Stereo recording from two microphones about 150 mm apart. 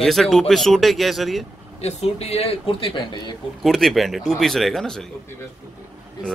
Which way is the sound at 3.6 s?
Centre (ahead or behind).